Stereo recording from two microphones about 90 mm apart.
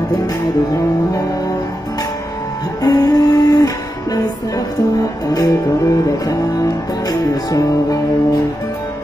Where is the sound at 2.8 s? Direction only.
45° left (ahead or behind).